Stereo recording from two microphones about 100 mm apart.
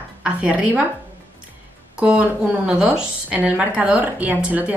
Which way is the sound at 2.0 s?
10° right (ahead or behind).